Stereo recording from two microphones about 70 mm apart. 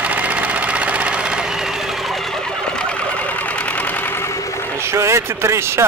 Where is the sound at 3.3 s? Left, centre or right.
Left.